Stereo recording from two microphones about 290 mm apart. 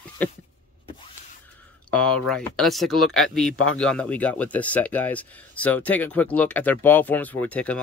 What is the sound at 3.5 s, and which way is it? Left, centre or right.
Speech, left.